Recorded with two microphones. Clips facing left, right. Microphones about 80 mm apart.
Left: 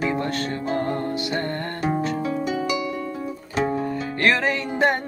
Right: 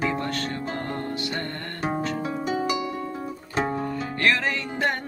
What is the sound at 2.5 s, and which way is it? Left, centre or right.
Music, right.